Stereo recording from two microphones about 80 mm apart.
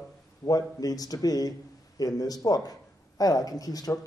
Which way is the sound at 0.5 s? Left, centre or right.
Left.